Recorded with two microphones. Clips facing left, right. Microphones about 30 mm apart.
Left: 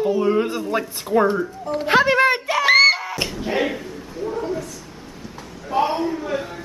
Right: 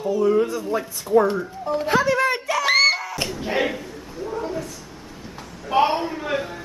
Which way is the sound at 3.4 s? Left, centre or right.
Centre.